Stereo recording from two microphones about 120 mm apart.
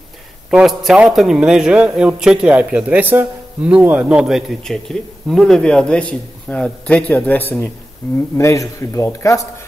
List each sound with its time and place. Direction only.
0.5 s a man's voice: 5° right (ahead or behind); by 9.4 s 25° left (ahead or behind)